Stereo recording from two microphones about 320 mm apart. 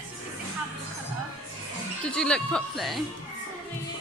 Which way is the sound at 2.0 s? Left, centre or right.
Centre.